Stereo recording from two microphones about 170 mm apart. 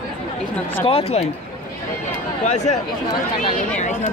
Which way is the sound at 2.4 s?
45° left (ahead or behind).